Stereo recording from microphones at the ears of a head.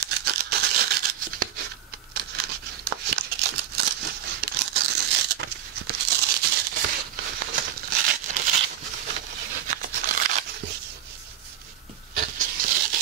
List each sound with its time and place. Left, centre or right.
0.0 s tearing: right
2.1 s crumpling: right
12.1 s a sound: right